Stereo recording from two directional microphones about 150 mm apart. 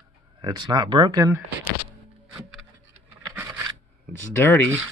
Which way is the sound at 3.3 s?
15° right (ahead or behind).